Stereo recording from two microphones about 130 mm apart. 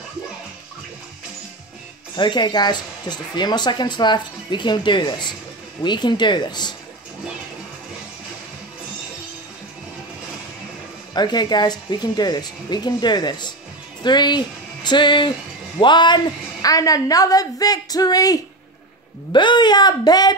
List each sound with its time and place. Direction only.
2.1 s speech: 35° left (ahead or behind)
11.1 s a woman's voice: 35° left (ahead or behind)